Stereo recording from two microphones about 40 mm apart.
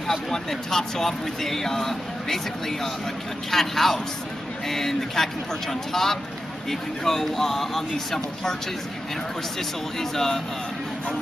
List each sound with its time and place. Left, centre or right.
0.1 s a man's voice: centre
9.9 s speech: centre